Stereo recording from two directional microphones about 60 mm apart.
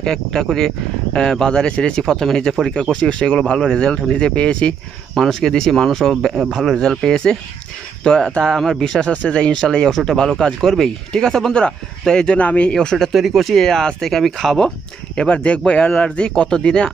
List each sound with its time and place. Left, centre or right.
0.0 s speech: centre
5.1 s speech: centre
9.1 s speech: centre
15.1 s speech: centre